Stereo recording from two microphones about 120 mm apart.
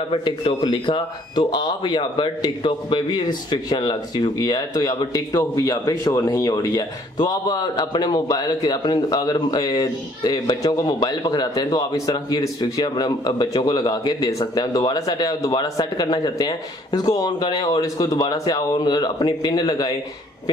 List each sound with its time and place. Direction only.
0.1 s a man's voice: 50° left (ahead or behind)